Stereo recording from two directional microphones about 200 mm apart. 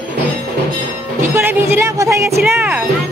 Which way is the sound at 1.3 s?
10° right (ahead or behind).